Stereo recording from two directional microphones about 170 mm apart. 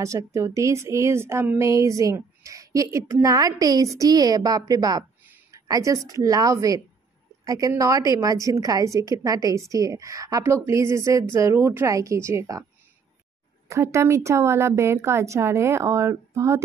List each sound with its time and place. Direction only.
0.0 s a woman's voice: 20° right (ahead or behind)
13.7 s speech: 15° right (ahead or behind)